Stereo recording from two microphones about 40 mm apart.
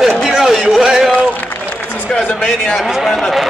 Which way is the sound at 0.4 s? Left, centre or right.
Centre.